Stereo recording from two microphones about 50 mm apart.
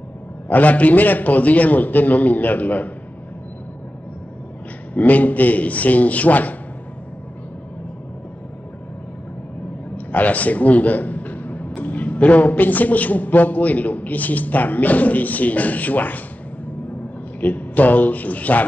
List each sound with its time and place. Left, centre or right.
0.5 s a man's voice: left
4.9 s a man's voice: left
9.9 s a man's voice: left
17.4 s a man's voice: left